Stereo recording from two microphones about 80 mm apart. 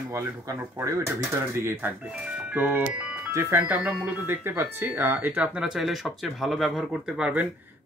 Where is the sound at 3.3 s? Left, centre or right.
Right.